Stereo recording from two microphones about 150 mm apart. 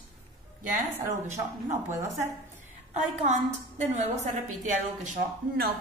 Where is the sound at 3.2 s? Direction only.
50° right (ahead or behind).